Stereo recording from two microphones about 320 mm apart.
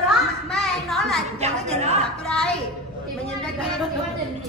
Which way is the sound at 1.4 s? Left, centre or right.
Centre.